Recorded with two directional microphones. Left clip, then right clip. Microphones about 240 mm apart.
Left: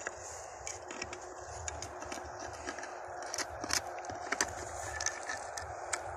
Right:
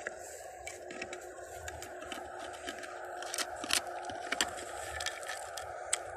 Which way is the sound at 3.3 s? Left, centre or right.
Right.